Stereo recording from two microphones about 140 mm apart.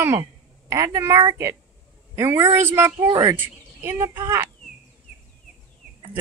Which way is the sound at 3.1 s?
25° right (ahead or behind).